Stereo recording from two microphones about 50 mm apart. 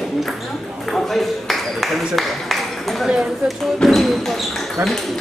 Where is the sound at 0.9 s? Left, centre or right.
Centre.